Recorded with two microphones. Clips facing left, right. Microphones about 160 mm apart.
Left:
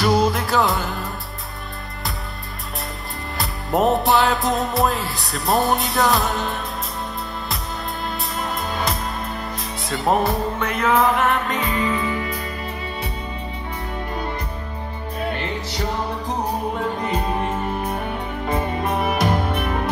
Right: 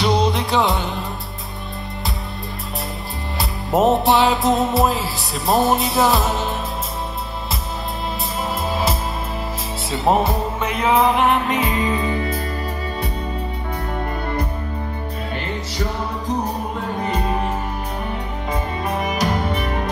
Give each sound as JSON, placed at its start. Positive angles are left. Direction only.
{"t": 0.0, "sound": "music", "side_deg": 0}
{"t": 3.3, "sound": "music", "side_deg": 0}
{"t": 8.4, "sound": "music", "side_deg": -5}
{"t": 10.8, "sound": "music", "side_deg": -25}
{"t": 11.8, "sound": "music", "side_deg": -30}
{"t": 19.0, "sound": "music", "side_deg": 55}